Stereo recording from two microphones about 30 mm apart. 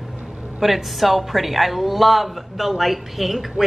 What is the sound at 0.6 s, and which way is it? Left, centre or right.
A woman's voice, centre.